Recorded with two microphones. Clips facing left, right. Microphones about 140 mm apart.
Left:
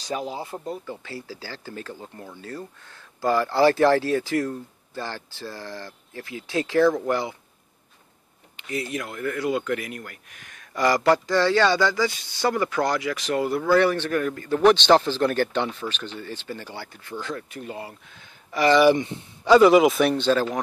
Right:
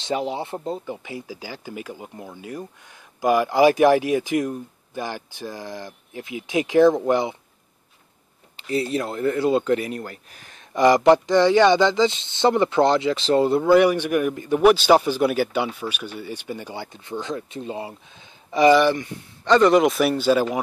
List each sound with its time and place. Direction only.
0.0 s speech: 25° right (ahead or behind)
8.5 s speech: 30° right (ahead or behind)
18.9 s a man's voice: 25° left (ahead or behind)
19.4 s speech: 5° left (ahead or behind); by 20.6 s 10° right (ahead or behind)